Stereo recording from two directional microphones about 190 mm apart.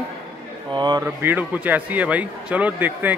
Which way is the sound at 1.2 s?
10° right (ahead or behind).